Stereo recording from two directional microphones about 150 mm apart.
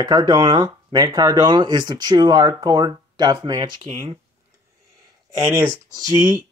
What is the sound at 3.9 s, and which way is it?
Speech, 45° right (ahead or behind).